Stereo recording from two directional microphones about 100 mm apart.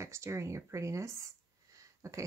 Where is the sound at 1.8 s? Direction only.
30° right (ahead or behind).